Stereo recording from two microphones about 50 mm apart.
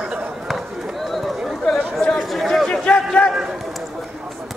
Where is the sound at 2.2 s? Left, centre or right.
Centre.